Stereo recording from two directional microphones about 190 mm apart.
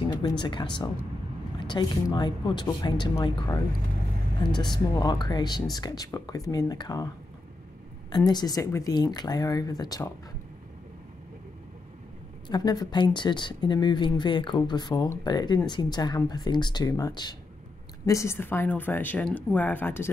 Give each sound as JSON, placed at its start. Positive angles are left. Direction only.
{"t": 0.0, "sound": "speech", "side_deg": 25}
{"t": 4.7, "sound": "speech", "side_deg": 20}
{"t": 8.3, "sound": "speech", "side_deg": 20}
{"t": 12.4, "sound": "speech", "side_deg": 20}